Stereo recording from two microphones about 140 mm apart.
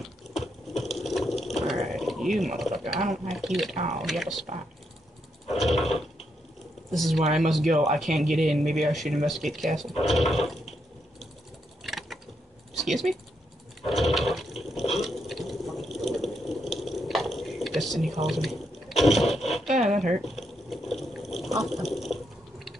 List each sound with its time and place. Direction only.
0.0 s water: centre (ahead or behind)
2.0 s mechanisms: centre (ahead or behind)
2.6 s speech: centre (ahead or behind)
5.5 s a sound: centre (ahead or behind)
6.9 s speech: centre (ahead or behind)
7.7 s speech: 65° right (ahead or behind)
8.0 s speech: centre (ahead or behind)
11.8 s a sound: centre (ahead or behind)
12.7 s speech: centre (ahead or behind)
13.8 s toilet flush: centre (ahead or behind)
18.2 s a sound: centre (ahead or behind)
19.7 s zipper: 60° right (ahead or behind)
20.2 s a sound: centre (ahead or behind)
21.6 s water: centre (ahead or behind)